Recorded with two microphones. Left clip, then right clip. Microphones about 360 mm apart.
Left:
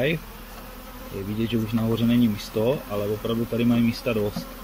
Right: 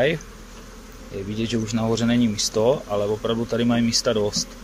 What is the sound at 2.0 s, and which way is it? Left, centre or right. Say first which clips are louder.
Speech: right 2 dB; right.